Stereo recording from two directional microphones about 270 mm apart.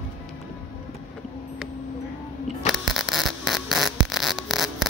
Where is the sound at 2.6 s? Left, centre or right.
Centre.